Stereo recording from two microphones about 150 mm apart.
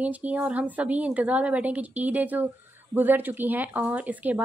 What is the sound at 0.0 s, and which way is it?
A woman's voice, 10° right (ahead or behind).